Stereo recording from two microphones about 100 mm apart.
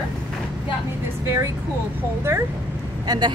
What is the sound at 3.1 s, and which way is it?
Speech, 45° right (ahead or behind).